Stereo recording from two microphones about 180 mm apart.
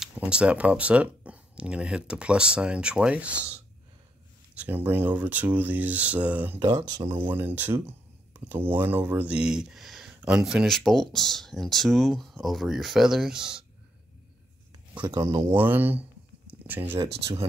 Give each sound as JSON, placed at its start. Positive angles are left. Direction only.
{"t": 0.0, "sound": "speech", "side_deg": -5}
{"t": 6.6, "sound": "speech", "side_deg": -25}
{"t": 7.3, "sound": "speech", "side_deg": -10}
{"t": 15.0, "sound": "speech", "side_deg": -20}